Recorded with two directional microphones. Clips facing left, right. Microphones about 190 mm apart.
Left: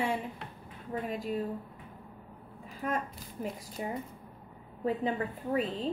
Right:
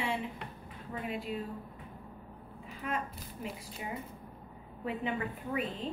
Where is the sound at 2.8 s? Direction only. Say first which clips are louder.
Left 3 dB; 40° left (ahead or behind).